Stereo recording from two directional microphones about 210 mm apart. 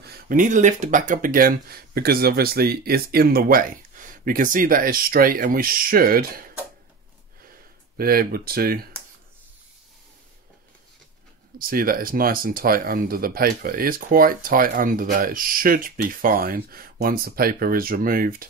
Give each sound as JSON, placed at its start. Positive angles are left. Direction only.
{"t": 0.0, "sound": "speech", "side_deg": -40}
{"t": 8.0, "sound": "speech", "side_deg": -45}
{"t": 11.5, "sound": "speech", "side_deg": -45}